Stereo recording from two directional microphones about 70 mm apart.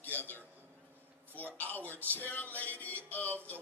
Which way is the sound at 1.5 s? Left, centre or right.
Left.